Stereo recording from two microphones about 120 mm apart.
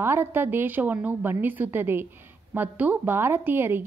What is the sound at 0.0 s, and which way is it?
A woman's voice, 20° right (ahead or behind).